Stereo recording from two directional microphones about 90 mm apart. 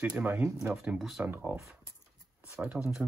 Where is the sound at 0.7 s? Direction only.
5° right (ahead or behind).